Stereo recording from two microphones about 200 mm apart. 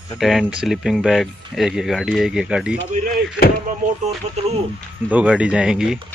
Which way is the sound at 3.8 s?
40° right (ahead or behind).